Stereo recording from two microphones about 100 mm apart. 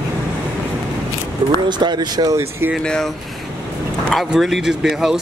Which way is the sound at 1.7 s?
45° right (ahead or behind).